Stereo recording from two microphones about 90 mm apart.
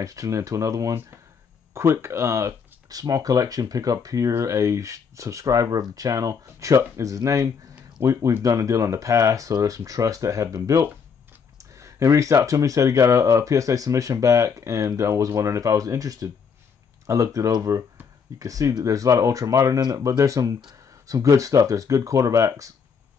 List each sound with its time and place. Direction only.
0.0 s speech: 40° right (ahead or behind)